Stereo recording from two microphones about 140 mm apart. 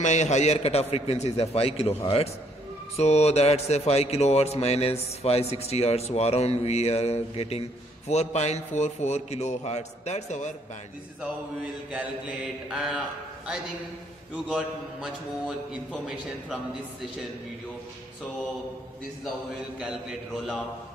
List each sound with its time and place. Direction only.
0.0 s a man's voice: 55° left (ahead or behind)
12.6 s mantra: 5° right (ahead or behind)
14.3 s a man's voice: 5° right (ahead or behind)
19.8 s a man's voice: 5° right (ahead or behind)